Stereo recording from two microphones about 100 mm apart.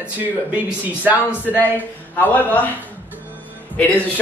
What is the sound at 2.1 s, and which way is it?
Speech, 15° left (ahead or behind).